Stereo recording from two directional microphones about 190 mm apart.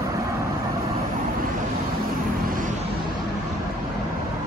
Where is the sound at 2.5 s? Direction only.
45° right (ahead or behind).